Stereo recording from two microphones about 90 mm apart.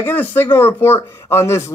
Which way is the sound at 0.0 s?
20° left (ahead or behind).